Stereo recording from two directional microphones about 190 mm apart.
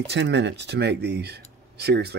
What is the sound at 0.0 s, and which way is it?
Speech, 65° right (ahead or behind).